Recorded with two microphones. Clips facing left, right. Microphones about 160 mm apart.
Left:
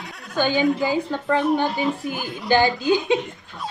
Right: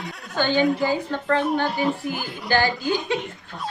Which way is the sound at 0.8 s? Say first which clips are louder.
Left 1 dB; 15° left (ahead or behind).